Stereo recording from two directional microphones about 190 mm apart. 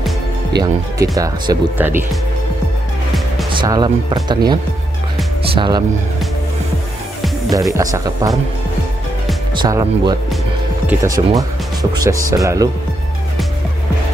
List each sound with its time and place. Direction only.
0.6 s speech: 15° right (ahead or behind)
3.5 s speech: 20° right (ahead or behind)
7.7 s speech: 20° right (ahead or behind)
9.6 s speech: 20° right (ahead or behind)